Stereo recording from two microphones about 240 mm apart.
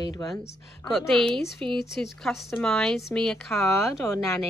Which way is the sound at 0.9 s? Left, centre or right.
Centre.